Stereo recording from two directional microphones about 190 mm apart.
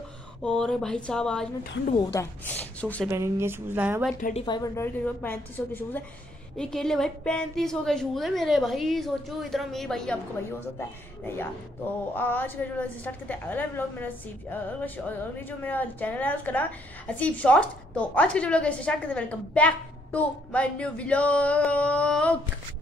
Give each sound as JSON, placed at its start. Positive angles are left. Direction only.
{"t": 0.4, "sound": "a woman's voice", "side_deg": 5}
{"t": 3.1, "sound": "speech", "side_deg": -15}
{"t": 4.2, "sound": "speech", "side_deg": 35}
{"t": 4.5, "sound": "a woman's voice", "side_deg": 15}